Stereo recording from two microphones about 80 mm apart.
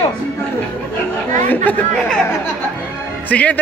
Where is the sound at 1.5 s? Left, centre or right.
Centre.